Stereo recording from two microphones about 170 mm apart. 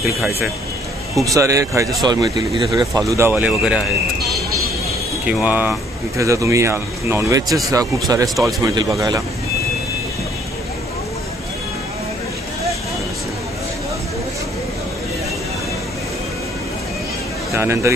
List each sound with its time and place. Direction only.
1.2 s speech: 20° right (ahead or behind)
5.2 s speech: 10° right (ahead or behind)
17.5 s speech: 15° right (ahead or behind)